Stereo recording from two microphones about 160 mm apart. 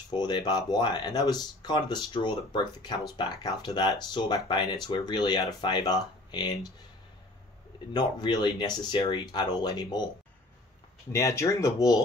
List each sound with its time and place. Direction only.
0.1 s speech: 25° left (ahead or behind)
7.9 s speech: 25° left (ahead or behind)
11.1 s speech: 20° left (ahead or behind)